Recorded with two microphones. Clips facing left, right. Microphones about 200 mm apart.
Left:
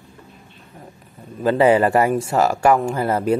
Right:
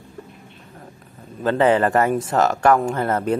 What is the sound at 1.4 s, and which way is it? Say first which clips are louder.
Speech: left 2 dB; 10° left (ahead or behind).